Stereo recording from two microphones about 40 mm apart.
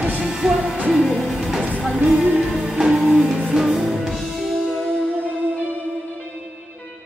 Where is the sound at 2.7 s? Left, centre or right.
Right.